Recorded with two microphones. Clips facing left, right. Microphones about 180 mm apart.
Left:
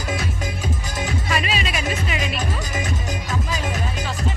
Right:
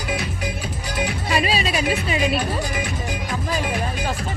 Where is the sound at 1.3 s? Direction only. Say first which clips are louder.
Right 4 dB; 30° right (ahead or behind).